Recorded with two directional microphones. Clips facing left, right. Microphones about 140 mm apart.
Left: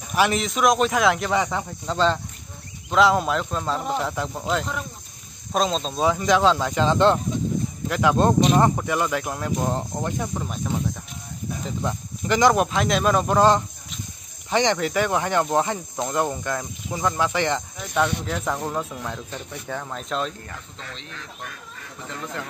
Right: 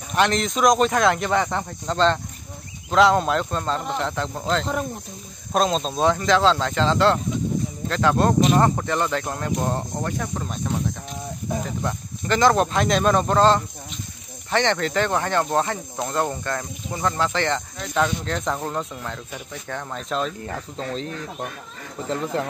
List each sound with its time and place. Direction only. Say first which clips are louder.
0.1 s speech: right 1 dB; 5° left (ahead or behind)
5.5 s speech: right 2 dB; centre (ahead or behind); by 10.3 s 15° left (ahead or behind)
10.3 s speech: even; centre (ahead or behind)
11.8 s speech: even; 15° left (ahead or behind)
12.7 s speech: right 1 dB; centre (ahead or behind)
20.4 s speech: right 9 dB; 35° right (ahead or behind)